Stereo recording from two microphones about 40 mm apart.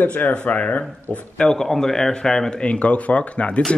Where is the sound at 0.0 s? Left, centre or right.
Left.